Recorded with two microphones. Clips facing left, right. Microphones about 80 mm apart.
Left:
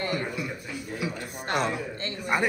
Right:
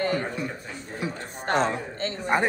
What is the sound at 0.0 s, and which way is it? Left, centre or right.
A woman's voice, right.